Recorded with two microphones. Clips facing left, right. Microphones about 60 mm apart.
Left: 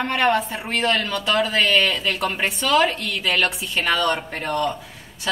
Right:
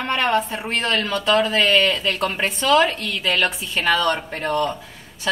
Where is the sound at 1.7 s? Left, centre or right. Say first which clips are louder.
Right 2 dB; right.